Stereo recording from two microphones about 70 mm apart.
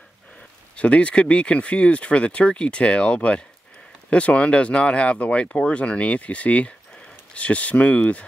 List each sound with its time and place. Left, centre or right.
0.7 s speech: centre